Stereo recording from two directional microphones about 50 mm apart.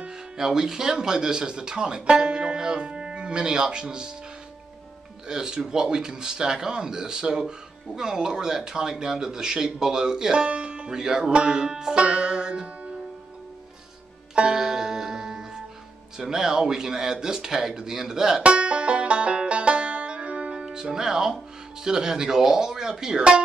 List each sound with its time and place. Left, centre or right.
0.4 s speech: centre
5.3 s speech: centre
12.0 s banjo: centre
14.3 s music: centre
16.2 s speech: centre
18.4 s banjo: right
21.8 s speech: centre